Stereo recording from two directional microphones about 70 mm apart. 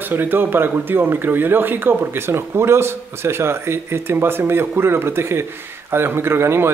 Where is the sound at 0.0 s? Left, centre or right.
Right.